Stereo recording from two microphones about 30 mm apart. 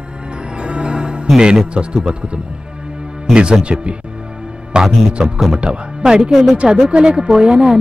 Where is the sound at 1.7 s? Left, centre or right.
Right.